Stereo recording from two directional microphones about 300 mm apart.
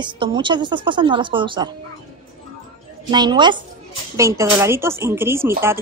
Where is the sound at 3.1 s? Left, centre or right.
Centre.